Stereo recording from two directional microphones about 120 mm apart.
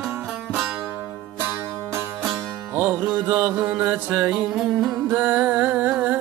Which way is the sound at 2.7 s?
15° right (ahead or behind).